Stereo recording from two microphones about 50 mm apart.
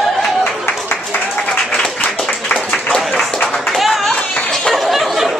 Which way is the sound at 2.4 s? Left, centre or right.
Left.